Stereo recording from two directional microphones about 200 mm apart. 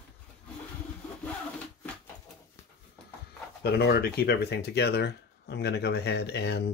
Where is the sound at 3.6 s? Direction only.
55° left (ahead or behind).